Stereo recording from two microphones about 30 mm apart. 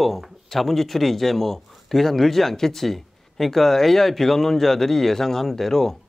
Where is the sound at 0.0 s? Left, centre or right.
Centre.